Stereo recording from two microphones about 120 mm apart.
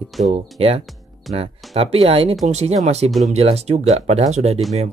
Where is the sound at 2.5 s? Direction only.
65° right (ahead or behind).